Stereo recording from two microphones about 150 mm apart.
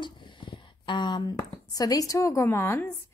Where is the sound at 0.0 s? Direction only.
30° left (ahead or behind).